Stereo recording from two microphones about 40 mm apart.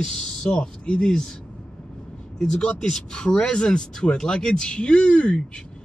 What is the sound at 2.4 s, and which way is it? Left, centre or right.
Speech, centre.